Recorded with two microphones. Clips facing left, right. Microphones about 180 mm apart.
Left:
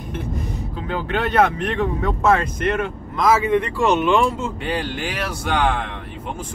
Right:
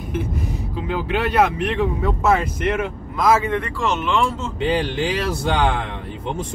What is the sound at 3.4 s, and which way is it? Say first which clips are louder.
Speech: left 4 dB; 15° left (ahead or behind).